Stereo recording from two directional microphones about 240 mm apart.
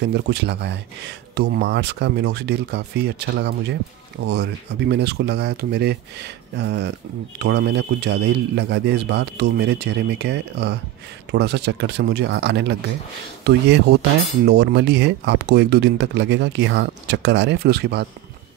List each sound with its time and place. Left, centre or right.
0.0 s speech: right